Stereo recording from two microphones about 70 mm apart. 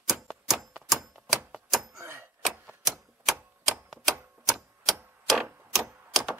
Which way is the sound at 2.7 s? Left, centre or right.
Centre.